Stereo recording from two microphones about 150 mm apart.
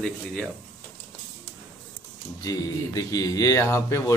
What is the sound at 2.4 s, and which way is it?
Speech, 20° left (ahead or behind).